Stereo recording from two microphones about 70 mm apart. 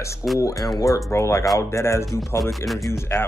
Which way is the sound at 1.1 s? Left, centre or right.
Left.